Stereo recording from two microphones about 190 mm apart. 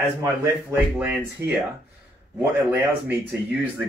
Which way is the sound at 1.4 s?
15° right (ahead or behind).